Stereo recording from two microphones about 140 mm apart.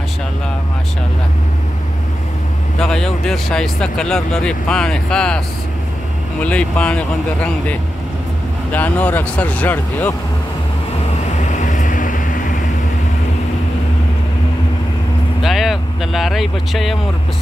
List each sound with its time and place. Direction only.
2.8 s speech: 5° left (ahead or behind)
6.4 s speech: 10° left (ahead or behind)
11.5 s vehicle: 65° left (ahead or behind)
15.4 s vehicle: centre (ahead or behind)